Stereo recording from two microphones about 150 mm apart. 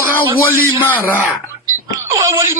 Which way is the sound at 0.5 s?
10° left (ahead or behind).